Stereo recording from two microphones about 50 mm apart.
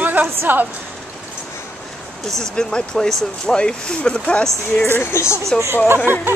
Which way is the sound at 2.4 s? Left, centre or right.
Centre.